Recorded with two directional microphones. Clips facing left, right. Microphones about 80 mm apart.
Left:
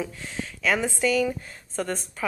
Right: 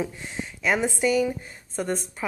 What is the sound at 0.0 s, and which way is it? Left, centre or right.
A woman's voice, centre.